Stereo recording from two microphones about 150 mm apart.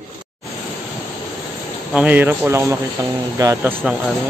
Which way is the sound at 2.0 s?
10° right (ahead or behind).